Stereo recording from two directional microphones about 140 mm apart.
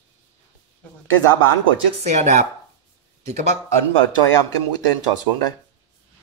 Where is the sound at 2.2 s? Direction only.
55° right (ahead or behind).